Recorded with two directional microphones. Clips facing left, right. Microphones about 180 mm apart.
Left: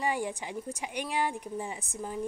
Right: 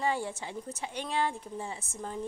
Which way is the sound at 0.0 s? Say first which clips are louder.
Even; 15° left (ahead or behind).